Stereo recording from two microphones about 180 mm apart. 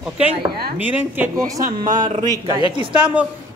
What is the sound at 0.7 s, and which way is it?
Speech, 10° right (ahead or behind).